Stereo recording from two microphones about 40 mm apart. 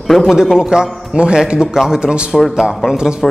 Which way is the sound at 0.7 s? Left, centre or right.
Right.